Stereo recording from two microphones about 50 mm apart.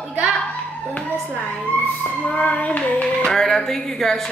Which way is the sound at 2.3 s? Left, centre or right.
Left.